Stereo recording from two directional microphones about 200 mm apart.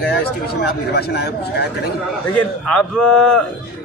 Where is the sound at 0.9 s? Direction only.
55° left (ahead or behind).